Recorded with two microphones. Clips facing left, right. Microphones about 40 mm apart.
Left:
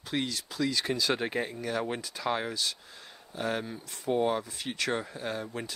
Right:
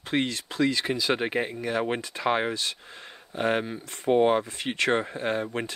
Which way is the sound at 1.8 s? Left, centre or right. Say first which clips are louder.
Right 5 dB; right.